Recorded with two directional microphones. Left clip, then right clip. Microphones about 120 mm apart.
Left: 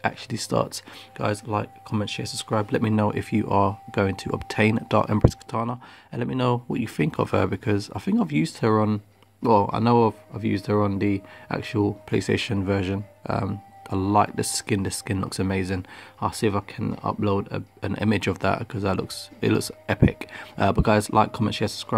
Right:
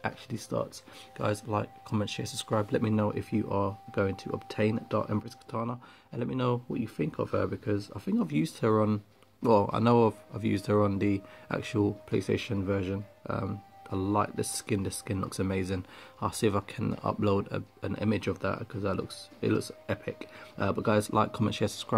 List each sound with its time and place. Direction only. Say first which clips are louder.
0.0 s speech: left 9 dB; 25° left (ahead or behind)
1.1 s speech: left 5 dB; 10° left (ahead or behind); by 5.2 s 45° left (ahead or behind)
5.5 s speech: left 7 dB; 25° left (ahead or behind)
6.7 s speech: left 7 dB; 45° left (ahead or behind)
8.3 s speech: left 4 dB; 20° left (ahead or behind)
12.1 s speech: left 6 dB; 25° left (ahead or behind); by 17.6 s 5° left (ahead or behind)
17.8 s speech: left 7 dB; 30° left (ahead or behind); by 21.9 s centre (ahead or behind)